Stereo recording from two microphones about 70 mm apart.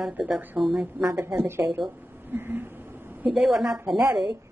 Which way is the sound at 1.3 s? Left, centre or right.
Right.